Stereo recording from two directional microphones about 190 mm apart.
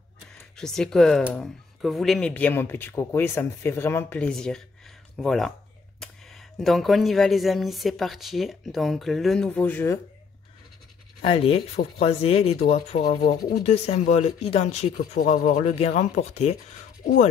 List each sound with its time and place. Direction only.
0.3 s speech: centre (ahead or behind)
11.2 s speech: 30° left (ahead or behind)
15.1 s speech: 45° left (ahead or behind)
17.0 s speech: 45° left (ahead or behind)